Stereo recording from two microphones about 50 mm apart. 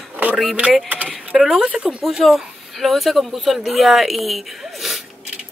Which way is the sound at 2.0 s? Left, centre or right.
Centre.